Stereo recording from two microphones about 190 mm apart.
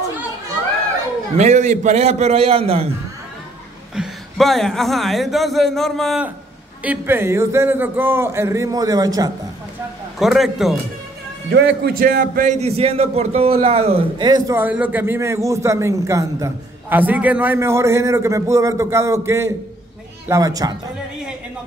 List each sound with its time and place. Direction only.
1.3 s a man's voice: 35° right (ahead or behind)
3.9 s a man's voice: centre (ahead or behind); by 9.3 s 20° right (ahead or behind)
10.1 s a man's voice: centre (ahead or behind)
11.5 s a man's voice: 60° right (ahead or behind); by 14.6 s 20° right (ahead or behind)
14.6 s a man's voice: 10° right (ahead or behind)